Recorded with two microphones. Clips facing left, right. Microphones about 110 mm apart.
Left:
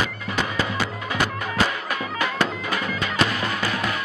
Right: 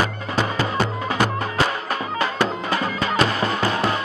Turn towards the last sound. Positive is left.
turn(degrees=-30)  # may be behind; listen again after turning